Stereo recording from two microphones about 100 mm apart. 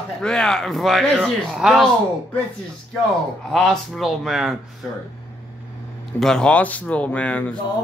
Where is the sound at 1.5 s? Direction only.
5° right (ahead or behind).